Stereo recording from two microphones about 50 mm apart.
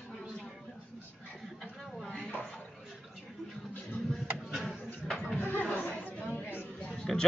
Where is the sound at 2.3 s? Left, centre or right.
Left.